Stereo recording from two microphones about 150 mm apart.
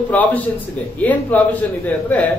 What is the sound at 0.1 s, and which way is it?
A man's voice, 10° left (ahead or behind).